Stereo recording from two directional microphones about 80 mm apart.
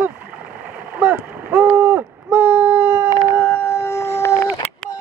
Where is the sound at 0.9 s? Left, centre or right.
Right.